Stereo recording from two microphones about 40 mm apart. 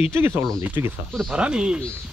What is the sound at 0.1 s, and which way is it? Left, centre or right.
Speech, right.